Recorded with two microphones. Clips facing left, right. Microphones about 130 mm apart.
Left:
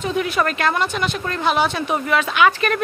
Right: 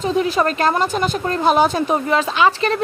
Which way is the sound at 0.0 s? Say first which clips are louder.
Right 3 dB; 35° right (ahead or behind).